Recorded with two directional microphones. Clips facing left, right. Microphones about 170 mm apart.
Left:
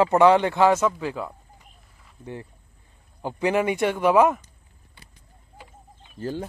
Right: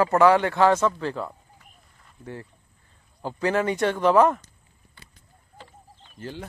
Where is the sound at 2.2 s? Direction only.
20° left (ahead or behind).